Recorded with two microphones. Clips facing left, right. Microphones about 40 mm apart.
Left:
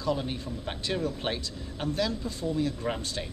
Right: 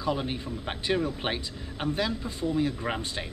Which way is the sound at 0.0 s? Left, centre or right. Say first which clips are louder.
Right 1 dB; centre.